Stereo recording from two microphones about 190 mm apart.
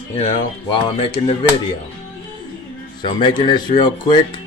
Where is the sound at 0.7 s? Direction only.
25° left (ahead or behind).